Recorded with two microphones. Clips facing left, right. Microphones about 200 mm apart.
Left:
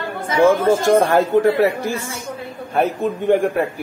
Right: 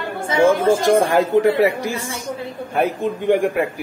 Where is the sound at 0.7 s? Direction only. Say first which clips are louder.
Left 1 dB; 15° right (ahead or behind).